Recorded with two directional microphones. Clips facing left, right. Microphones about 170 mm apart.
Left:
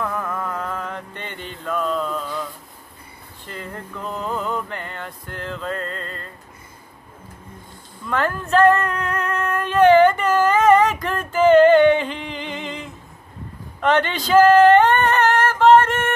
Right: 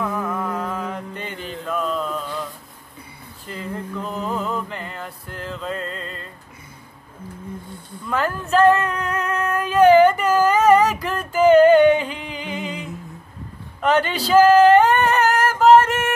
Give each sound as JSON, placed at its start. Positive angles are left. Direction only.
{"t": 0.0, "sound": "music", "side_deg": -10}
{"t": 1.2, "sound": "mantra", "side_deg": -5}
{"t": 3.4, "sound": "a sound", "side_deg": 0}
{"t": 5.8, "sound": "music", "side_deg": 45}
{"t": 8.1, "sound": "female singing", "side_deg": -5}
{"t": 11.1, "sound": "a sound", "side_deg": -10}
{"t": 13.7, "sound": "speech", "side_deg": -10}
{"t": 14.3, "sound": "female singing", "side_deg": -5}